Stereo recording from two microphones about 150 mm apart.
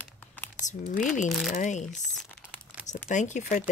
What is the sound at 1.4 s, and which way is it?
Speech, 55° left (ahead or behind).